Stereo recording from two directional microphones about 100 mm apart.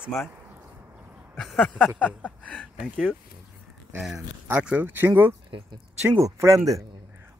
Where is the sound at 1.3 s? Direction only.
10° left (ahead or behind).